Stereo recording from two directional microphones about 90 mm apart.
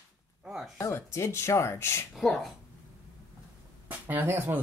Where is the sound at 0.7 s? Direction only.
30° left (ahead or behind).